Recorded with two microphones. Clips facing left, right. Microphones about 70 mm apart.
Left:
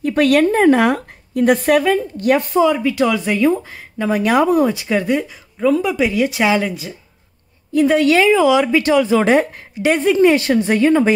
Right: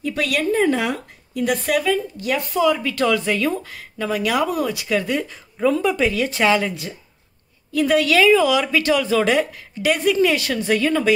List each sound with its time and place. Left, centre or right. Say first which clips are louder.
0.0 s a woman's voice: left 8 dB; left
2.5 s speech: left 4 dB; left
5.3 s speech: left 3 dB; centre
6.7 s speech: left 2 dB; centre
7.7 s speech: left 4 dB; left